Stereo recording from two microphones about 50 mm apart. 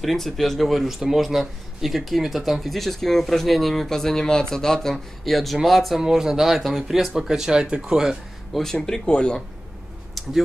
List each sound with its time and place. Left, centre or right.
0.0 s speech: centre
8.5 s speech: centre
8.8 s speech: centre